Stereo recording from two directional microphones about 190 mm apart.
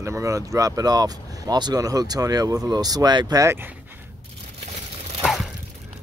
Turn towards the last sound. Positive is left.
turn(degrees=0)  # may be behind; listen again after turning